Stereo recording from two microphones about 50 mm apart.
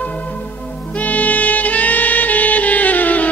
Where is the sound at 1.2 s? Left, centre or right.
Left.